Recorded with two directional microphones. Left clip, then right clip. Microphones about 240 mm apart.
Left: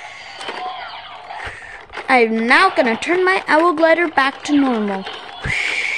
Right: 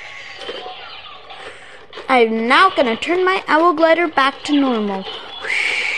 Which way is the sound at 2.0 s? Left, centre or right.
Centre.